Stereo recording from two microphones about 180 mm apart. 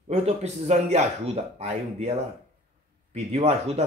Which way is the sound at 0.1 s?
35° right (ahead or behind).